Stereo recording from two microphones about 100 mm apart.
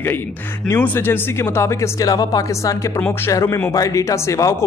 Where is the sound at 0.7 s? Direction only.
20° left (ahead or behind).